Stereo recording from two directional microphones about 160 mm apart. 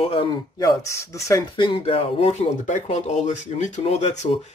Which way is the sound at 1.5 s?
30° left (ahead or behind).